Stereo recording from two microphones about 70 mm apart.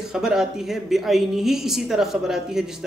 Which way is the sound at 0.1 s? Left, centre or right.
Centre.